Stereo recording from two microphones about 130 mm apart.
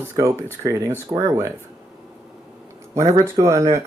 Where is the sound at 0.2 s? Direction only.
30° right (ahead or behind).